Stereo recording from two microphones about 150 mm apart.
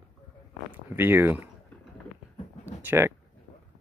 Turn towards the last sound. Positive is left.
turn(degrees=-15)  # may be behind; listen again after turning